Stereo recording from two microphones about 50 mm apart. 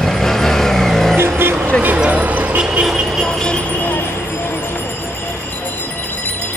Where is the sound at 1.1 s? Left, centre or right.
Right.